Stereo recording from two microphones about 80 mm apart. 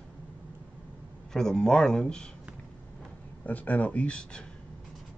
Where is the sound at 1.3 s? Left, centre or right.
Centre.